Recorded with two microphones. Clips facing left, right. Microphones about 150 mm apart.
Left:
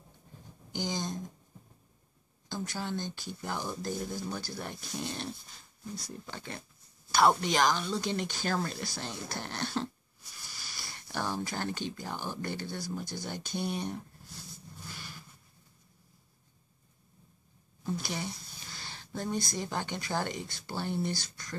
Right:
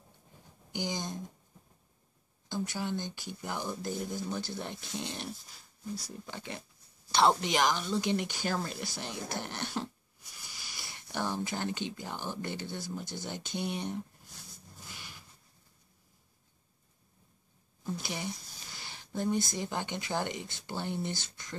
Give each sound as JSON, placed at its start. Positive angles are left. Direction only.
{"t": 0.7, "sound": "speech", "side_deg": -15}
{"t": 2.5, "sound": "speech", "side_deg": -15}
{"t": 5.5, "sound": "speech", "side_deg": -5}
{"t": 14.9, "sound": "a sound", "side_deg": -15}
{"t": 17.9, "sound": "a sound", "side_deg": -15}
{"t": 19.5, "sound": "speech", "side_deg": -15}